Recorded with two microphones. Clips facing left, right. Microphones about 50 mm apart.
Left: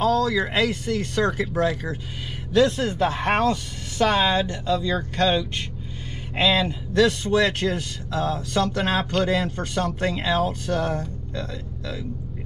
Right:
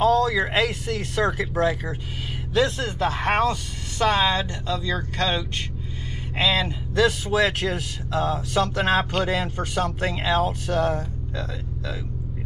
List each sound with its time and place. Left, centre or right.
0.0 s speech: centre